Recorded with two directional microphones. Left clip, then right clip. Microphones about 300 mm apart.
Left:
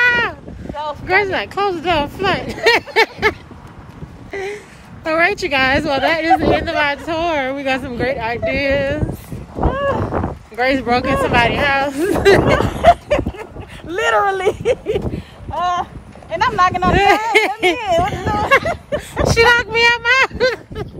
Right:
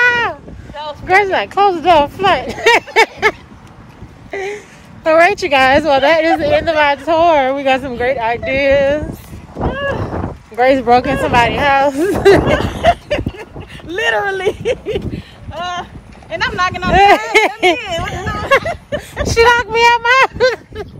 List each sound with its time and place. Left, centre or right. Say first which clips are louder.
0.0 s boat: right 2 dB; centre
1.0 s a woman's voice: right 5 dB; centre
9.7 s a sound: left 1 dB; left
10.5 s speech: right 6 dB; centre
12.5 s a sound: left 1 dB; left
16.9 s speech: right 4 dB; centre
17.7 s speech: left 4 dB; left
19.3 s speech: right 2 dB; centre